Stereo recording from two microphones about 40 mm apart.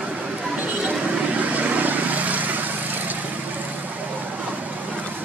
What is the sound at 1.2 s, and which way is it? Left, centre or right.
Vehicle, right.